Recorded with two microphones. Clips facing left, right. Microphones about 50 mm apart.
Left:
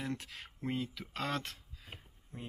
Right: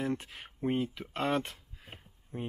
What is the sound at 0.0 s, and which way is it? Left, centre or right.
Speech, centre.